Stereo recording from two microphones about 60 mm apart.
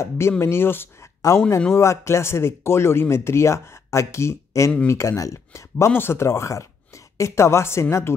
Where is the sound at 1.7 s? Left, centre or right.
Left.